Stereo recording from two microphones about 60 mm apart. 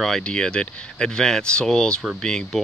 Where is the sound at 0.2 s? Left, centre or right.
Centre.